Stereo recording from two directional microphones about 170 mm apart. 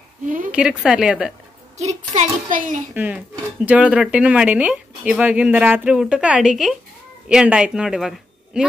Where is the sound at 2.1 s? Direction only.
50° right (ahead or behind).